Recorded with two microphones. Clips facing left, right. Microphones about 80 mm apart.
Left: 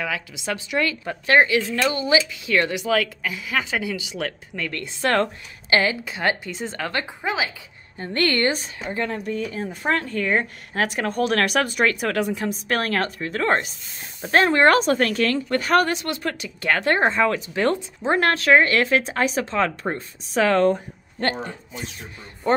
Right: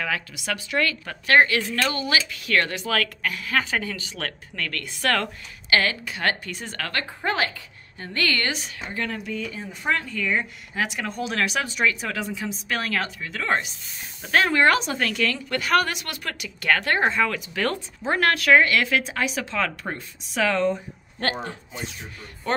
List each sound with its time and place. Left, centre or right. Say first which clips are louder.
0.4 s a woman's voice: left 2 dB; left
8.1 s speech: left 4 dB; left
9.2 s speech: left 5 dB; left